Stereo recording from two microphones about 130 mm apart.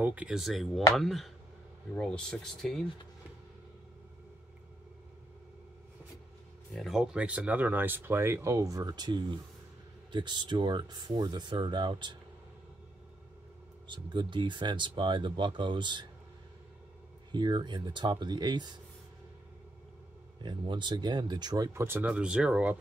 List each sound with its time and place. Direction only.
0.0 s speech: 10° right (ahead or behind)
6.7 s speech: centre (ahead or behind); by 12.2 s 35° right (ahead or behind)
13.8 s speech: 35° right (ahead or behind)
17.3 s speech: 35° right (ahead or behind)
20.4 s speech: 35° right (ahead or behind)
21.7 s speech: 15° right (ahead or behind)